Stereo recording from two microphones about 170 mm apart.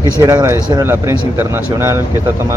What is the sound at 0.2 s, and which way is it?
Speech, 20° right (ahead or behind).